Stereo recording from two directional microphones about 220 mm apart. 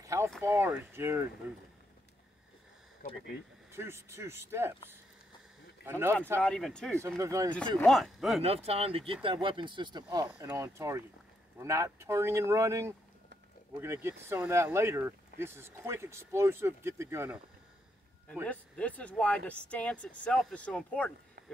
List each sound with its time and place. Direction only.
0.0 s a sound: 15° right (ahead or behind)
0.4 s speech: 10° right (ahead or behind)
3.7 s speech: 10° right (ahead or behind)
5.9 s speech: 10° right (ahead or behind)
6.4 s speech: 5° left (ahead or behind)
7.0 s speech: 15° right (ahead or behind)
7.7 s speech: centre (ahead or behind)
8.4 s speech: 25° right (ahead or behind); by 17.4 s 10° right (ahead or behind)
18.3 s speech: 5° left (ahead or behind)